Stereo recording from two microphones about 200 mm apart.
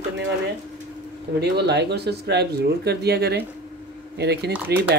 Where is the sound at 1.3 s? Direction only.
55° right (ahead or behind).